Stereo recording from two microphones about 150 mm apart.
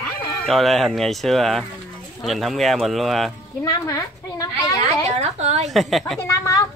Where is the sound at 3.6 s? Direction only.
20° left (ahead or behind).